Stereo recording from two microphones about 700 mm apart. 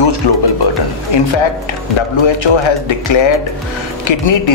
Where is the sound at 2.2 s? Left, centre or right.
Left.